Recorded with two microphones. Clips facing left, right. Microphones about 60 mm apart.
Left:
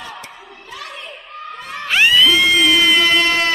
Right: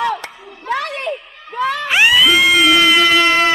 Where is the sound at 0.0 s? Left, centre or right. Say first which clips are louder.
Right 13 dB; right.